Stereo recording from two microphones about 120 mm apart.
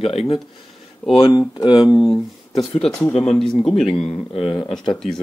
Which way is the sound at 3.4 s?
5° left (ahead or behind).